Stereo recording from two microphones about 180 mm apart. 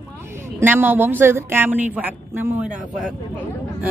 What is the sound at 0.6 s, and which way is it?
Speech, 10° right (ahead or behind).